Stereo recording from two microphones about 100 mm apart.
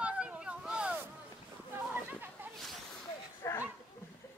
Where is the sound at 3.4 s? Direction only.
30° left (ahead or behind).